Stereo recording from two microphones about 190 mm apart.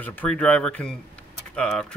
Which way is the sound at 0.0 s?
10° left (ahead or behind).